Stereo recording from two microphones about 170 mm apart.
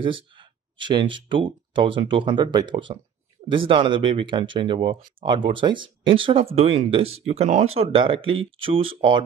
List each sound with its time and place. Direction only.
0.0 s speech: 30° right (ahead or behind)